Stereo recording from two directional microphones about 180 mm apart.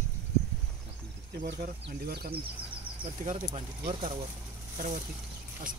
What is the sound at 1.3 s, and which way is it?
Speech, 60° right (ahead or behind).